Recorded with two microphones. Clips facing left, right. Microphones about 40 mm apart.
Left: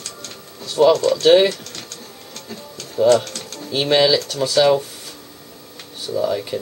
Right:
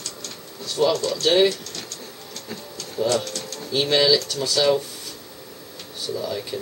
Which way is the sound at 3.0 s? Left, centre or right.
Left.